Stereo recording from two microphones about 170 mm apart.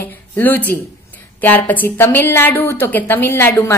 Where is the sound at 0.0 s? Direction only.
10° left (ahead or behind).